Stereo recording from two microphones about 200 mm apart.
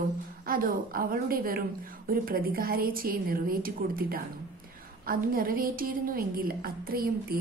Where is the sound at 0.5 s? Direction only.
45° right (ahead or behind).